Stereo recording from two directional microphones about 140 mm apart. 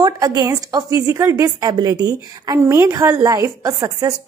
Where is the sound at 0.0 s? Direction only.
30° right (ahead or behind).